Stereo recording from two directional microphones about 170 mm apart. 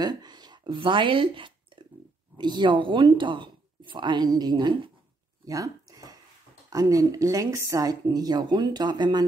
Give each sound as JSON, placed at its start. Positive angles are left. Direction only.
{"t": 0.0, "sound": "speech", "side_deg": -25}
{"t": 5.4, "sound": "a sound", "side_deg": -20}
{"t": 6.7, "sound": "speech", "side_deg": -20}